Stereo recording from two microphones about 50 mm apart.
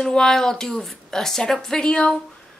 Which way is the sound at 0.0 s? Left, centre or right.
Centre.